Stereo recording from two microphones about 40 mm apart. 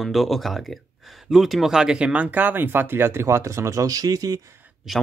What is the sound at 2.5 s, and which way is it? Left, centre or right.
Speech, right.